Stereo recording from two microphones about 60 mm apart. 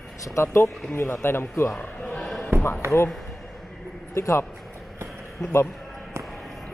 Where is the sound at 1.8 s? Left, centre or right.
Centre.